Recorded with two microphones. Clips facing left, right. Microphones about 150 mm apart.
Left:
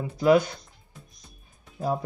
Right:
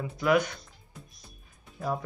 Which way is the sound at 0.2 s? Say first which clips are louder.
Left 5 dB; 30° left (ahead or behind).